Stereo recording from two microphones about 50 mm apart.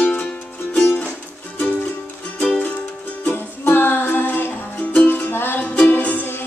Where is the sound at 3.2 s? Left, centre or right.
Left.